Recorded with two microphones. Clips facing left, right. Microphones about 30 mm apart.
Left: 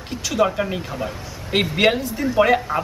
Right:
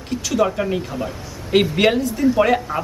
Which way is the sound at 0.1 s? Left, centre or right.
Centre.